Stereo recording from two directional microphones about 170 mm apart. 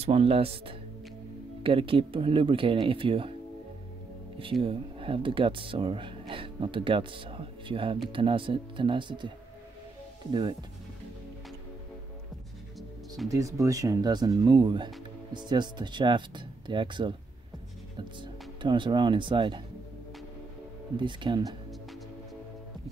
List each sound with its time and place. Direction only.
0.0 s speech: 35° right (ahead or behind)
4.4 s speech: 30° right (ahead or behind)
13.3 s speech: 20° right (ahead or behind)
20.9 s speech: 30° right (ahead or behind)